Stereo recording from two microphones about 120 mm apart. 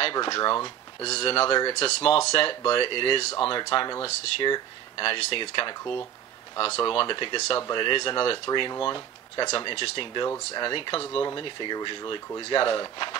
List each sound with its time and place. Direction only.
0.0 s speech: 45° left (ahead or behind)
1.0 s speech: 55° left (ahead or behind)